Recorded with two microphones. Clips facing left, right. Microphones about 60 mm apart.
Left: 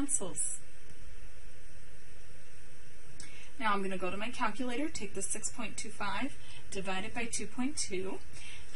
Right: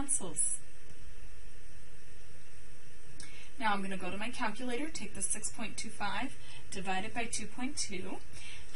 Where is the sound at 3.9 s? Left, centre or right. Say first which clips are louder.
Left 3 dB; left.